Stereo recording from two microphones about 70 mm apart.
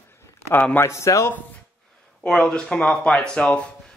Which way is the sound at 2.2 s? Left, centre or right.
Centre.